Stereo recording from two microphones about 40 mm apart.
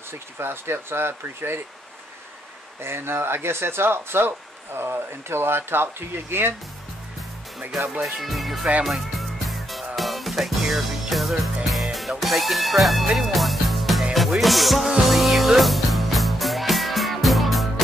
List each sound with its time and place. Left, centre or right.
0.1 s speech: right
2.8 s speech: right
8.0 s speech: centre
8.8 s music: centre